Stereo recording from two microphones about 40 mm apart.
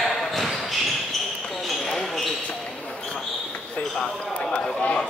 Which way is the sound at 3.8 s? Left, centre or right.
Left.